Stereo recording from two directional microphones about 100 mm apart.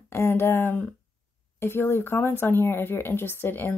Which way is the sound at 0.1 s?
25° left (ahead or behind).